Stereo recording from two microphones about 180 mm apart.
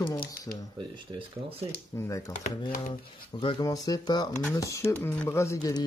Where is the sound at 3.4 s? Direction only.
25° left (ahead or behind).